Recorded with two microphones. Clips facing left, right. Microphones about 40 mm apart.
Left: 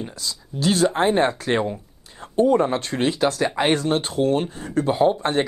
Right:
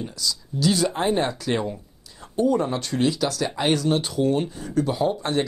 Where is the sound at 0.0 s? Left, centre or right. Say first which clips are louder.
Right 2 dB; left.